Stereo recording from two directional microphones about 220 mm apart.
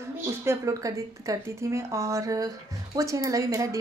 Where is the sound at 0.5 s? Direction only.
15° right (ahead or behind).